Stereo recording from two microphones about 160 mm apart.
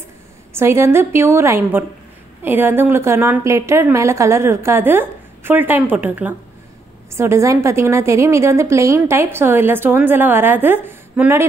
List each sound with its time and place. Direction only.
0.6 s a woman's voice: 15° right (ahead or behind)